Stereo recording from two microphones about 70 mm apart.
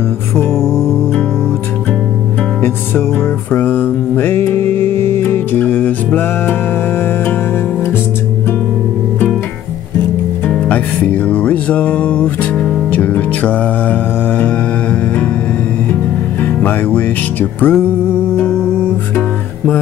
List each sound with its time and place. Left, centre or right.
2.6 s music: left
10.5 s music: left
16.6 s music: left